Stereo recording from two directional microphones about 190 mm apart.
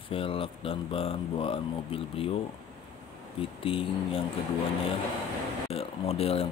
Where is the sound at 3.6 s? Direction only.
30° left (ahead or behind).